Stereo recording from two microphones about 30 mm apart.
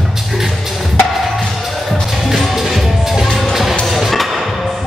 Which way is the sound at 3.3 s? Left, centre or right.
Centre.